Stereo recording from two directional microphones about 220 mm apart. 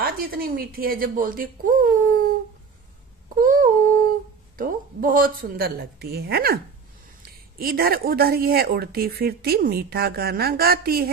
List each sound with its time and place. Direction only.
0.0 s speech: 40° right (ahead or behind)
3.4 s a sound: 40° right (ahead or behind)
4.6 s a woman's voice: 40° right (ahead or behind)